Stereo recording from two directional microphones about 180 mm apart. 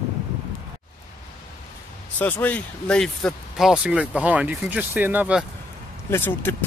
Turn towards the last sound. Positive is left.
turn(degrees=15)  # may be behind; listen again after turning